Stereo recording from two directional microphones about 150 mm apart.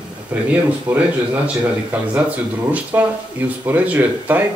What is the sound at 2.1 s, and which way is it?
Speech, 10° right (ahead or behind).